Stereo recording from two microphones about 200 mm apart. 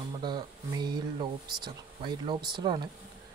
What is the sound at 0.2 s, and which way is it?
Speech, 20° right (ahead or behind).